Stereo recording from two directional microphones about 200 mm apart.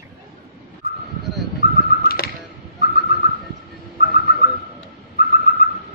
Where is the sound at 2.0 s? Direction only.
50° left (ahead or behind).